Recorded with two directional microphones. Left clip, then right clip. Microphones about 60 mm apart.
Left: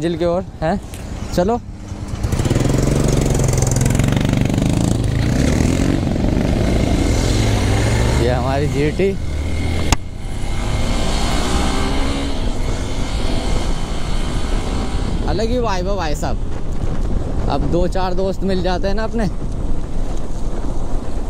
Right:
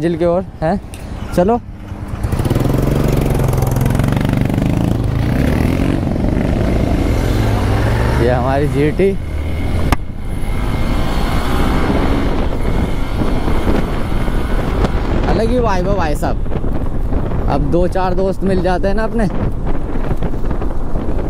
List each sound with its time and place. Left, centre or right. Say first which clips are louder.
0.0 s speech: right 3 dB; right
2.3 s vehicle: right 1 dB; left
8.5 s speech: right 4 dB; right
10.7 s vehicle: right 1 dB; left
15.3 s speech: right 3 dB; right
17.5 s speech: right 3 dB; right